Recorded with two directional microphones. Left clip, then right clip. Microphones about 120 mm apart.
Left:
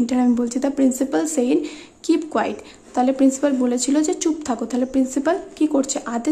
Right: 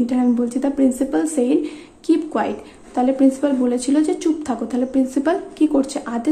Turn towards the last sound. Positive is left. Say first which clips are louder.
# right 1 dB
turn(degrees=20)  # may be behind; listen again after turning